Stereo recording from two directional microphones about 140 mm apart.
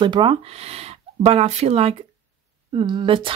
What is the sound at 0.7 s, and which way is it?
Speech, 50° right (ahead or behind).